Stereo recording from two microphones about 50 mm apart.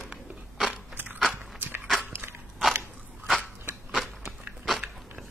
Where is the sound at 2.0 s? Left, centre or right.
Right.